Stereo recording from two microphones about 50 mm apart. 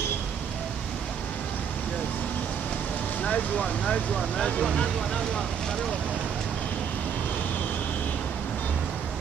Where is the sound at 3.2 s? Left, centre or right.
Left.